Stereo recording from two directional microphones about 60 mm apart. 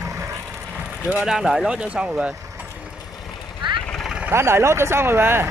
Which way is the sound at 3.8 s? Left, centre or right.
Centre.